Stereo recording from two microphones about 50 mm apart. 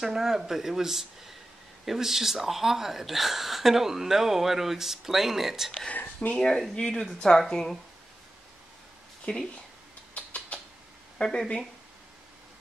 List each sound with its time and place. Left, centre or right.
0.0 s speech: centre
6.3 s a woman's voice: centre
9.3 s speech: left
10.1 s rodents: left
11.1 s a woman's voice: centre